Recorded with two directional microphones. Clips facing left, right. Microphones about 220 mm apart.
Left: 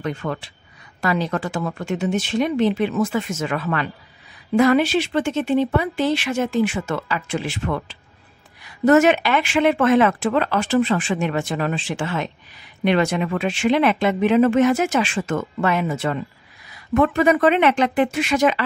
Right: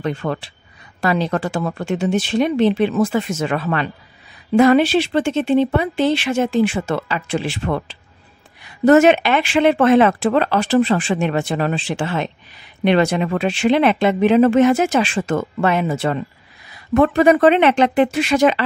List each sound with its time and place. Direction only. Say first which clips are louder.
0.0 s speech: right 3 dB; 30° right (ahead or behind)